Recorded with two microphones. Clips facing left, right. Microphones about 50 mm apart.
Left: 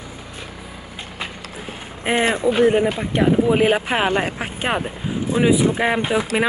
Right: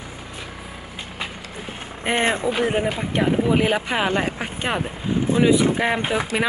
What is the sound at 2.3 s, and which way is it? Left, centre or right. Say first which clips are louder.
Speech: left 5 dB; centre.